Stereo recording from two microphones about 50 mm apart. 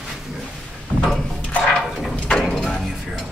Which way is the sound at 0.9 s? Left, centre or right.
Right.